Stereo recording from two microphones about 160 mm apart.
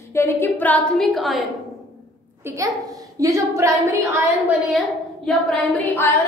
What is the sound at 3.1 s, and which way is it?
A woman's voice, 20° right (ahead or behind).